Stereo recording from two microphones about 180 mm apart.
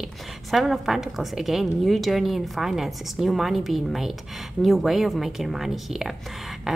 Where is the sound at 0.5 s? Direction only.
Centre (ahead or behind).